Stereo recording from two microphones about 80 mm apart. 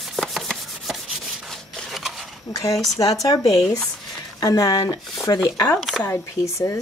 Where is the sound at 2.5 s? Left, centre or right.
Left.